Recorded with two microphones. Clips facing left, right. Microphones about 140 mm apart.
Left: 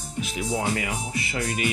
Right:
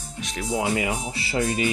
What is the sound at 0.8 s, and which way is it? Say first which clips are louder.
Speech: right 3 dB; 30° right (ahead or behind).